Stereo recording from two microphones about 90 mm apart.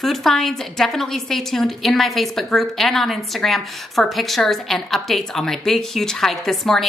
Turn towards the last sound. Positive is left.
turn(degrees=0)  # may be behind; listen again after turning